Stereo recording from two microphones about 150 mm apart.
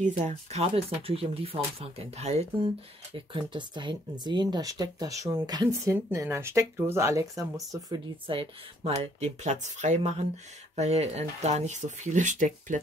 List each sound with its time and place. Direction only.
0.0 s speech: 50° right (ahead or behind)
3.2 s speech: 35° right (ahead or behind)
8.3 s speech: 40° right (ahead or behind); by 12.7 s 60° right (ahead or behind)